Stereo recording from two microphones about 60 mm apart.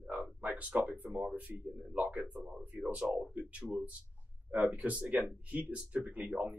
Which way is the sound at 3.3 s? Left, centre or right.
Right.